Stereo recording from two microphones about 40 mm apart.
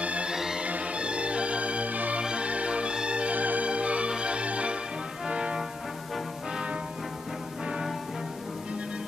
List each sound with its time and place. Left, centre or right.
0.0 s music: right
0.3 s music: centre
0.7 s music: right
2.2 s music: right